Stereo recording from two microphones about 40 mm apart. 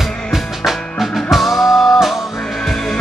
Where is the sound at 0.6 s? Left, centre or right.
Centre.